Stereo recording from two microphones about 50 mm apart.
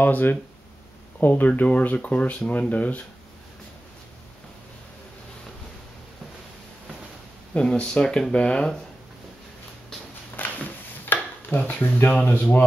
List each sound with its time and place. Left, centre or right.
0.0 s speech: left
7.5 s speech: centre
10.3 s a sound: left
11.6 s speech: left